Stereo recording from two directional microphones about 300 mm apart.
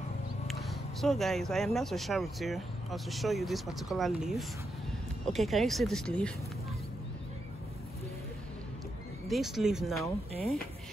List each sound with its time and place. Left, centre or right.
0.5 s speech: centre
9.3 s speech: centre